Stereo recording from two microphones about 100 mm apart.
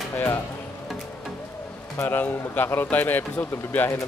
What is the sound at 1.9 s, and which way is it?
A man's voice, 20° left (ahead or behind).